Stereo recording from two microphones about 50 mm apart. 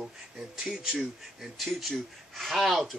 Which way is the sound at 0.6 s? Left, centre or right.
Centre.